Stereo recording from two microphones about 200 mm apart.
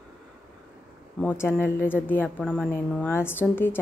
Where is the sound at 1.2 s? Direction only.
10° left (ahead or behind).